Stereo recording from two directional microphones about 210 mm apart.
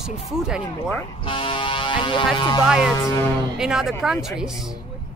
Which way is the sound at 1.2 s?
25° left (ahead or behind).